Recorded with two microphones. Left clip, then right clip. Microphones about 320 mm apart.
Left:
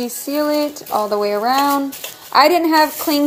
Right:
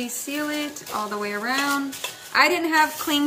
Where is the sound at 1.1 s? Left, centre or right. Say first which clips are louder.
Left 10 dB; left.